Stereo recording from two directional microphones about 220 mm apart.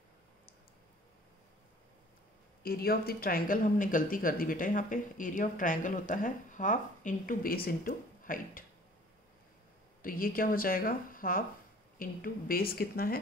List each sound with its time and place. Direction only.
2.6 s speech: 45° left (ahead or behind)
10.0 s a woman's voice: 40° left (ahead or behind)